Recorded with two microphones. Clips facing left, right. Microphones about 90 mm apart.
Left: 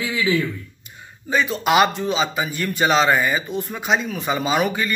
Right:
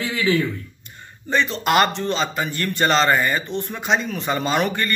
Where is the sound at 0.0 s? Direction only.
15° left (ahead or behind).